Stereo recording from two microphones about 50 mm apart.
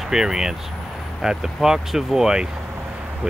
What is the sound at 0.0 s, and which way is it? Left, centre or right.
Speech, centre.